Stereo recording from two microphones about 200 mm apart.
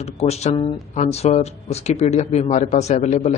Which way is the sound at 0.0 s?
30° left (ahead or behind).